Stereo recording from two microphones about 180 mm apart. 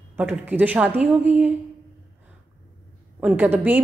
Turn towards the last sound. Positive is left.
turn(degrees=-10)  # may be behind; listen again after turning